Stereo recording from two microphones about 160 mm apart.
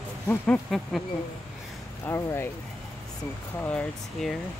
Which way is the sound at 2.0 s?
15° left (ahead or behind).